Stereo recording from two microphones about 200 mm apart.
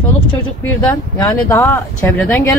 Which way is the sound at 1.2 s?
10° left (ahead or behind).